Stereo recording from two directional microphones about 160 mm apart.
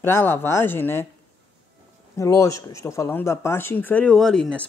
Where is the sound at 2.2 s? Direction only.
20° left (ahead or behind); by 4.6 s 5° left (ahead or behind).